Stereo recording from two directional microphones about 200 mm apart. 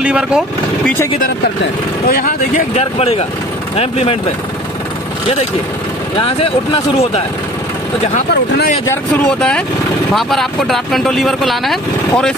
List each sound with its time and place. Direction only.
0.0 s speech: 5° right (ahead or behind)
2.0 s speech: 45° left (ahead or behind)
10.1 s speech: centre (ahead or behind)